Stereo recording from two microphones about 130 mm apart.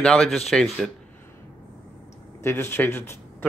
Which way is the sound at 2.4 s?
20° left (ahead or behind).